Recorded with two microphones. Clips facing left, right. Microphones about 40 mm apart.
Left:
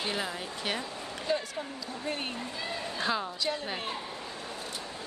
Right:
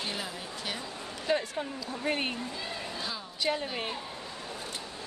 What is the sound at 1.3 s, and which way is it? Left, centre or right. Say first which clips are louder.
Speech: right 2 dB; right.